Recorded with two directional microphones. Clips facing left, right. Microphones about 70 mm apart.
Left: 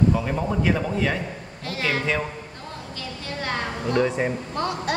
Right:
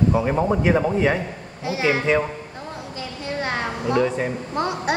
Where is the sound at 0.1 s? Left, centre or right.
Right.